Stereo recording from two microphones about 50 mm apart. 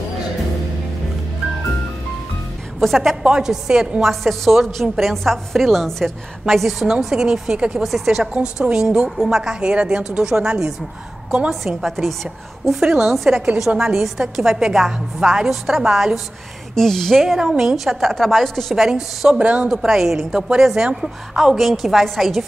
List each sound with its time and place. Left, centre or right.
2.8 s a woman's voice: centre
3.3 s a woman's voice: centre
4.1 s a woman's voice: centre
7.8 s a woman's voice: centre
8.3 s a woman's voice: right
11.6 s a woman's voice: centre
12.6 s a woman's voice: centre
16.7 s a woman's voice: centre
17.4 s a woman's voice: centre
18.8 s a woman's voice: centre
19.3 s speech: right
19.7 s a woman's voice: centre